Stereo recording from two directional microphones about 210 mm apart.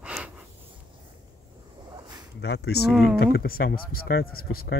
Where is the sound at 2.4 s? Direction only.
50° left (ahead or behind).